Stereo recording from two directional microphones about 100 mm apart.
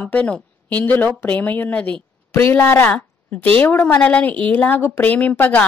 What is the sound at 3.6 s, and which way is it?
A woman's voice, 15° left (ahead or behind).